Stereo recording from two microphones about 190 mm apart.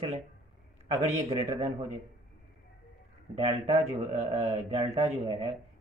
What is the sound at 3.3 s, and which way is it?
Speech, 30° right (ahead or behind).